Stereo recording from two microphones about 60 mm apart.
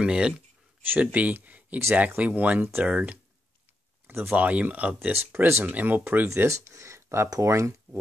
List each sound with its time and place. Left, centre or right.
0.0 s speech: centre
0.8 s speech: right
4.1 s speech: right
4.4 s speech: right
5.1 s speech: right
6.2 s speech: right